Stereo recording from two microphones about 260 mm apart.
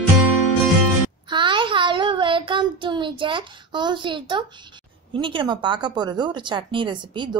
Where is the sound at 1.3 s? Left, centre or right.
Centre.